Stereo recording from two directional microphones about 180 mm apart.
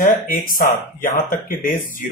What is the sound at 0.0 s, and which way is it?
Speech, 50° left (ahead or behind).